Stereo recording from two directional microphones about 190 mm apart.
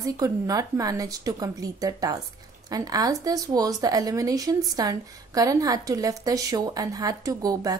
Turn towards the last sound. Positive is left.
turn(degrees=-20)  # may be behind; listen again after turning